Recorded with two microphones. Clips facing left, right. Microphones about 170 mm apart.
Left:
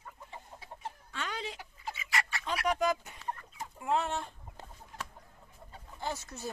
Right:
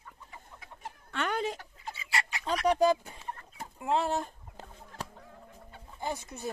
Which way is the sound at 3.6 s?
30° right (ahead or behind).